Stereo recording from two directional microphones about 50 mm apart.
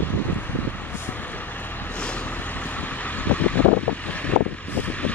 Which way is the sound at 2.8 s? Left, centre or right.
Left.